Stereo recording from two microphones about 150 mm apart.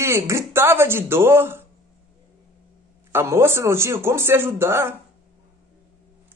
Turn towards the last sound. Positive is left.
turn(degrees=-15)  # may be behind; listen again after turning